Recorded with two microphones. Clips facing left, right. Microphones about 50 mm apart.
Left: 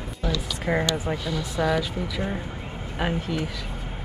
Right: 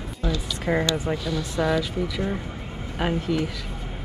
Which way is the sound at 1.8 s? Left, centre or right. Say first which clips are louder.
Right 2 dB; centre.